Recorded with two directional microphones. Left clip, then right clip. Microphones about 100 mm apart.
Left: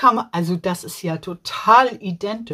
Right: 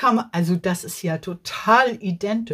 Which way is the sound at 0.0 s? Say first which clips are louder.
Left 4 dB; 5° left (ahead or behind).